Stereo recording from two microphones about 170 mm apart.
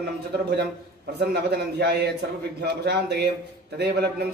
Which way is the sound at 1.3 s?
75° right (ahead or behind).